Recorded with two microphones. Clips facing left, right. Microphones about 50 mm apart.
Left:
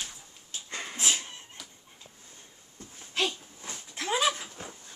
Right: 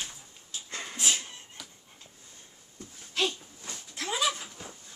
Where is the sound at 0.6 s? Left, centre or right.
Centre.